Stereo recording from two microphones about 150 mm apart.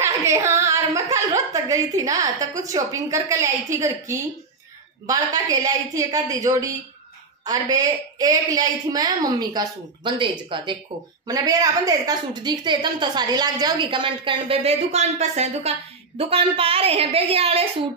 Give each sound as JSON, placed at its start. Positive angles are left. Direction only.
{"t": 0.0, "sound": "a woman's voice", "side_deg": -20}